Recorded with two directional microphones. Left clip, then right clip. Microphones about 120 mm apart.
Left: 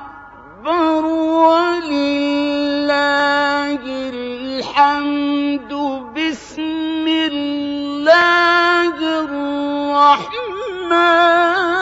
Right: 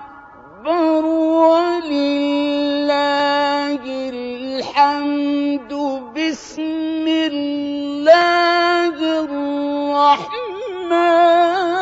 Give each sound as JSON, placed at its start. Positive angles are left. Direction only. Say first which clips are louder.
{"t": 0.7, "sound": "music", "louder": "even", "side_deg": -35}
{"t": 4.6, "sound": "a sound", "louder": "left 1 dB", "side_deg": -25}
{"t": 10.9, "sound": "music", "louder": "left 1 dB", "side_deg": -35}